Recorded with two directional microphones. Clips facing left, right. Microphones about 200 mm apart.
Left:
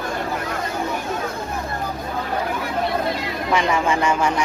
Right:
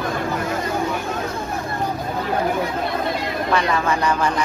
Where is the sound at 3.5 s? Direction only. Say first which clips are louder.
Left 1 dB; 15° left (ahead or behind).